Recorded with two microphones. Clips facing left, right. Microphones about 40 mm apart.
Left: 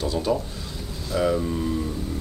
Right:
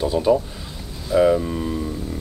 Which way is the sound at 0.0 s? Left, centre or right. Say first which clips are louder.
Right 6 dB; centre.